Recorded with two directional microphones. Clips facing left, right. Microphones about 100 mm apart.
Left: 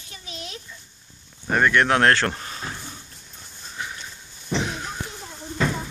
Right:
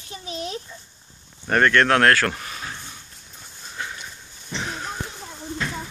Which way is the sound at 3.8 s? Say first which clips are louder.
Right 1 dB; 15° left (ahead or behind).